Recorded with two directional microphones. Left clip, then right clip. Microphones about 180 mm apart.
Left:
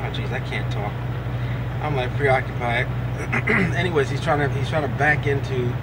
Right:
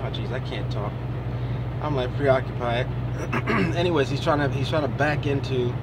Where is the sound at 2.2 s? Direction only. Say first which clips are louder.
Left 1 dB; 20° right (ahead or behind).